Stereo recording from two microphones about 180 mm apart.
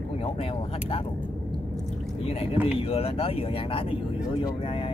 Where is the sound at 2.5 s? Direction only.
10° right (ahead or behind).